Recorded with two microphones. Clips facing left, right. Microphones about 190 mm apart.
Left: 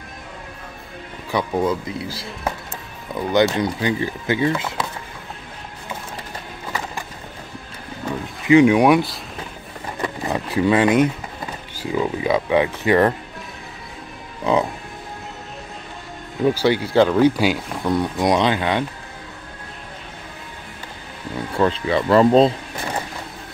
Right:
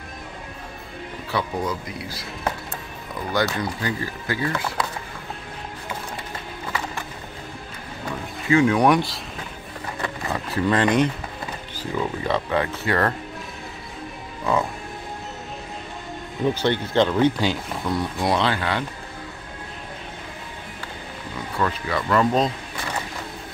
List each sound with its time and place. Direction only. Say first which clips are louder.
1.3 s speech: left 5 dB; 25° left (ahead or behind)
3.3 s speech: left 6 dB; 20° left (ahead or behind)
8.5 s speech: left 5 dB; 15° left (ahead or behind)
10.0 s a sound: left 5 dB; 15° left (ahead or behind)
11.8 s speech: left 4 dB; 10° left (ahead or behind)
14.4 s speech: left 4 dB; 20° left (ahead or behind)
16.4 s speech: left 4 dB; 10° left (ahead or behind)
21.5 s speech: left 6 dB; 25° left (ahead or behind)